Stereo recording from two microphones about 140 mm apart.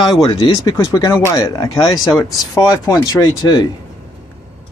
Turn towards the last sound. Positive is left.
turn(degrees=30)  # may be behind; listen again after turning